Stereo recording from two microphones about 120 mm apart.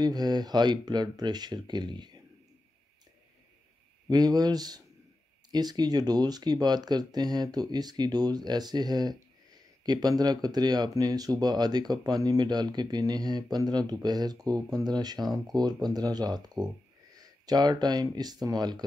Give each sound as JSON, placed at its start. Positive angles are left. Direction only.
{"t": 0.0, "sound": "speech", "side_deg": -35}
{"t": 4.1, "sound": "speech", "side_deg": -35}